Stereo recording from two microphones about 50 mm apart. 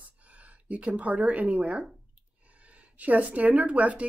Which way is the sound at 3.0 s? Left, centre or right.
Right.